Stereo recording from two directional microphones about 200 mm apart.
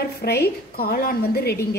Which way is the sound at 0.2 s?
50° left (ahead or behind).